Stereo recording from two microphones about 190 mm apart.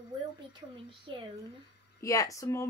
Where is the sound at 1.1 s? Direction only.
25° right (ahead or behind).